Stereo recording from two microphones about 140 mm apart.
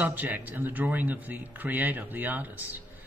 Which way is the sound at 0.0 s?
10° right (ahead or behind).